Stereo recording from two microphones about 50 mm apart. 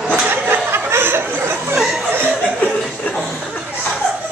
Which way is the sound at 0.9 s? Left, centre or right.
Right.